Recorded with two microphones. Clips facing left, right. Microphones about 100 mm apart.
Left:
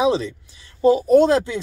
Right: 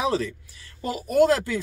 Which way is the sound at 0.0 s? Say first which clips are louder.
Left 6 dB; 20° left (ahead or behind).